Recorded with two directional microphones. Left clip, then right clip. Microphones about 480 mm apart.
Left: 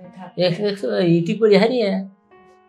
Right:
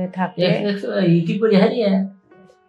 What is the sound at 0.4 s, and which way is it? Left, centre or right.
Speech, left.